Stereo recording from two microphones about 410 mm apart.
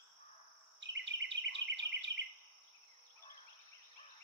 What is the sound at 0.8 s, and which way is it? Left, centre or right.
Insect, right.